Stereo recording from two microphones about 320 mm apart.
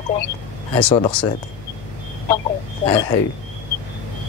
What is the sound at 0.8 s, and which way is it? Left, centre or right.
Speech, centre.